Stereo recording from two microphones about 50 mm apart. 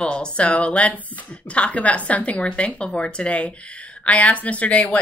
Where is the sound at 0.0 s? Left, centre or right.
Left.